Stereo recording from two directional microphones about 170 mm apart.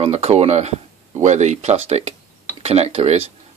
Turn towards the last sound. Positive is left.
turn(degrees=-35)  # may be behind; listen again after turning